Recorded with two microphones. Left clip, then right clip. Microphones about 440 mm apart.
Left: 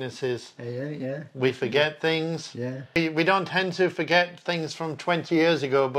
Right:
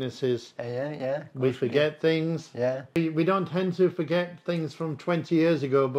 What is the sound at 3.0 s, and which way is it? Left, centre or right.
Speech, left.